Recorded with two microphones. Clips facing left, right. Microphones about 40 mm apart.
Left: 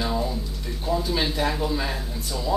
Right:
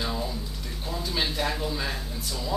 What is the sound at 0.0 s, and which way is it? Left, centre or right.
Speech, centre.